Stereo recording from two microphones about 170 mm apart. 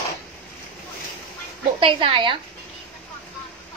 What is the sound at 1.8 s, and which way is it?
Speech, 30° right (ahead or behind).